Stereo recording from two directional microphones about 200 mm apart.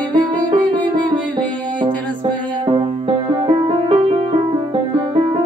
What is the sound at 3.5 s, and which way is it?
Music, 30° right (ahead or behind).